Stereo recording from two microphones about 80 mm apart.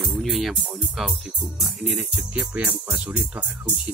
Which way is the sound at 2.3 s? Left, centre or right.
Centre.